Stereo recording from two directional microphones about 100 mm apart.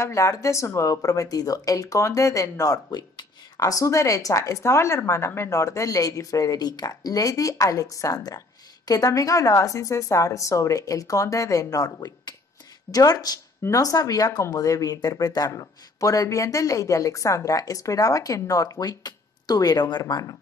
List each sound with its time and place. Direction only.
0.0 s speech: 30° left (ahead or behind)